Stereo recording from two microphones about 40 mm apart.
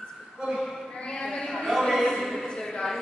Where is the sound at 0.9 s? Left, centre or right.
Centre.